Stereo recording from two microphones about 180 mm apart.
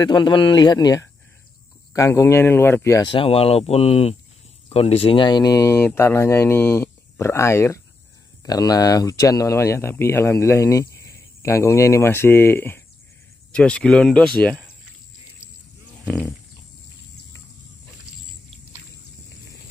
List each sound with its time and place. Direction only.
0.0 s speech: 25° left (ahead or behind)
3.1 s speech: 30° left (ahead or behind); by 14.7 s 5° left (ahead or behind)